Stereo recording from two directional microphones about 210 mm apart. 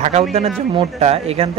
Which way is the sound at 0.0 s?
30° right (ahead or behind).